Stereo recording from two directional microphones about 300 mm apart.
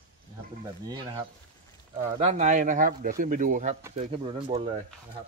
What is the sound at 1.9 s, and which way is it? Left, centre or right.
Speech, right.